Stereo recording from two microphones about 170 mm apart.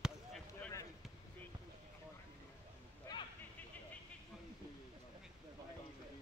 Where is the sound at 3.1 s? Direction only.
25° left (ahead or behind).